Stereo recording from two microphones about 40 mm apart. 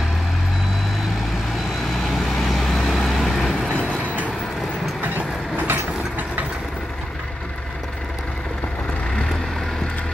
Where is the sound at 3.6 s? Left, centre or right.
Left.